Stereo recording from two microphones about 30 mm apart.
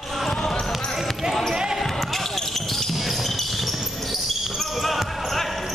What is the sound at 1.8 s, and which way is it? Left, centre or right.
Basketball bounce, centre.